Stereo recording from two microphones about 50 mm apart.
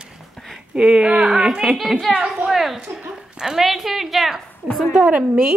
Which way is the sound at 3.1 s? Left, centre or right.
Centre.